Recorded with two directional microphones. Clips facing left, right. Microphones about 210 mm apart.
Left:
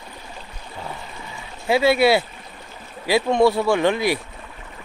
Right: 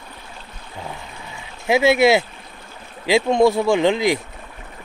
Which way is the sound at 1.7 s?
20° right (ahead or behind).